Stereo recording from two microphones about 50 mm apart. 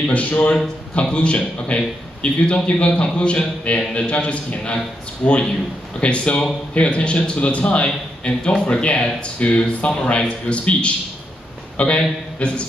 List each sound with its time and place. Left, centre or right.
0.1 s a man's voice: left
1.0 s a man's voice: left